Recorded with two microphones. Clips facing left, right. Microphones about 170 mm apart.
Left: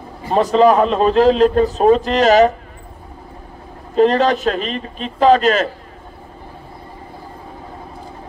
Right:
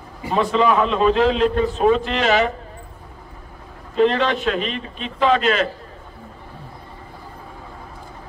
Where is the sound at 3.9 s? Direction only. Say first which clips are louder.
Left 4 dB; 40° left (ahead or behind).